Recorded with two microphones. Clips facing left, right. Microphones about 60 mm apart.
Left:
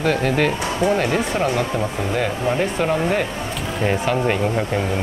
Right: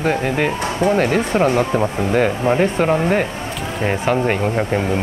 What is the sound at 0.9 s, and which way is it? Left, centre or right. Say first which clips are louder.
Speech: right 4 dB; right.